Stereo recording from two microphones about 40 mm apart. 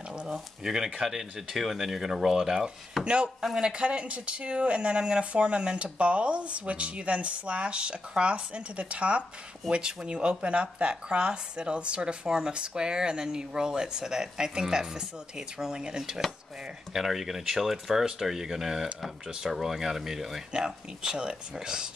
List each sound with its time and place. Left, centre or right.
0.3 s speech: centre
3.0 s speech: right
3.4 s speech: centre
3.7 s speech: right
16.9 s speech: centre
20.5 s speech: right